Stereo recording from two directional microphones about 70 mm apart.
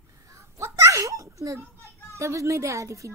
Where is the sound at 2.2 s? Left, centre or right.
Right.